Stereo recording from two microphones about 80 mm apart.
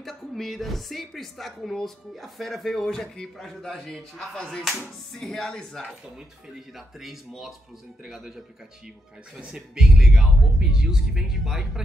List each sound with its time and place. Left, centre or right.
0.0 s speech: centre
7.0 s a man's voice: centre
9.4 s speech: centre